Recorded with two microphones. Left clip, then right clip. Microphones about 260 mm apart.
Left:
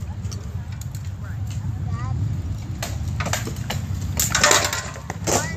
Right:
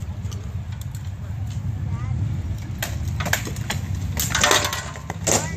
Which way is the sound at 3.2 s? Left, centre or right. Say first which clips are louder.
Right 3 dB; right.